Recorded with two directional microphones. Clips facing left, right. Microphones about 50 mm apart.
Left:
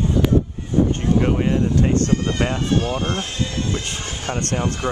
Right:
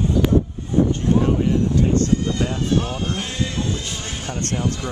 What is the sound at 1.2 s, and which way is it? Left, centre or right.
Speech, left.